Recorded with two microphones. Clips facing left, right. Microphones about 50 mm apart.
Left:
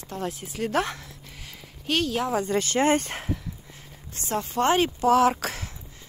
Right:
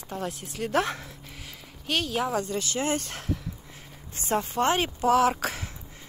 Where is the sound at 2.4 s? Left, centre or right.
Left.